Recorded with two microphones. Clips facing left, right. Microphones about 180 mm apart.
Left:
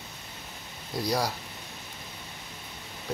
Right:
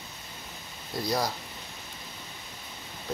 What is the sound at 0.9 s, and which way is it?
Speech, 10° left (ahead or behind).